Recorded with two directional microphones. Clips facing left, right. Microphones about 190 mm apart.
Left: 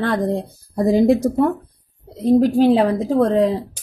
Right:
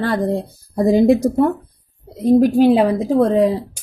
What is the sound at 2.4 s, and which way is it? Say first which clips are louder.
A woman's voice: right 2 dB; 10° right (ahead or behind).